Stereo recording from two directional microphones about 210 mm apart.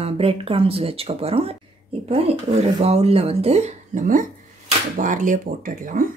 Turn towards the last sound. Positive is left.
turn(degrees=-40)  # may be behind; listen again after turning